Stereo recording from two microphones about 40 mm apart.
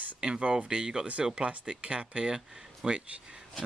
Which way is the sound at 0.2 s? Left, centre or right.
Right.